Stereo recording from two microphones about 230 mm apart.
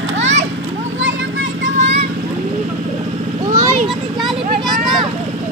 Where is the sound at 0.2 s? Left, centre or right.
Right.